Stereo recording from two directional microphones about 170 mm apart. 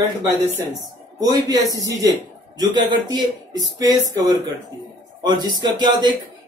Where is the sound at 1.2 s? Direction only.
20° right (ahead or behind).